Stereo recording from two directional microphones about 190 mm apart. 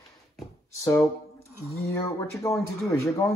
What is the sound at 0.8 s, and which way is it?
Speech, 15° left (ahead or behind).